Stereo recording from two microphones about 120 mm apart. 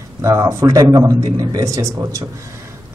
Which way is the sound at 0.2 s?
25° right (ahead or behind).